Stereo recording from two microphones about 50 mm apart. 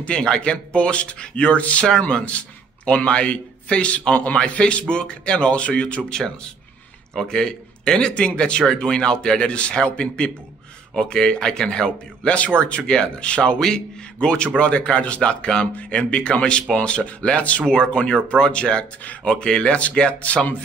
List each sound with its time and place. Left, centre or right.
0.0 s a man's voice: centre